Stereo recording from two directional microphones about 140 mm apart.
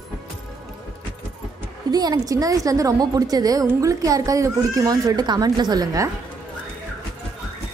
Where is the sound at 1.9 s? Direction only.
25° right (ahead or behind).